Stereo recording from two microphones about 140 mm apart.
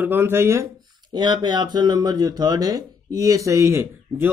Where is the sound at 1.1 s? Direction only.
30° right (ahead or behind).